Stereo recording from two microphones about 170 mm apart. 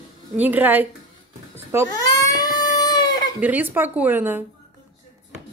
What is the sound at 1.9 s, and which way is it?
Baby cry, 20° left (ahead or behind).